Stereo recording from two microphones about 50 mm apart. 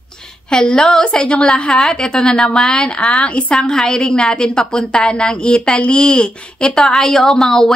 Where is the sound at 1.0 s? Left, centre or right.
Centre.